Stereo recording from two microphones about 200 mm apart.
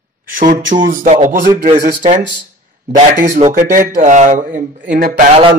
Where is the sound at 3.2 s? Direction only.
35° right (ahead or behind).